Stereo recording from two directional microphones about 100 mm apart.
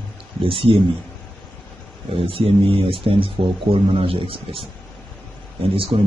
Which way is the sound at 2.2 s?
65° right (ahead or behind).